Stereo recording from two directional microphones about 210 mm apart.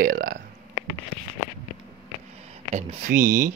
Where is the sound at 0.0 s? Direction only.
40° right (ahead or behind).